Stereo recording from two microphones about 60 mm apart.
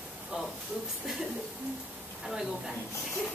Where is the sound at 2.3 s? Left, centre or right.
Centre.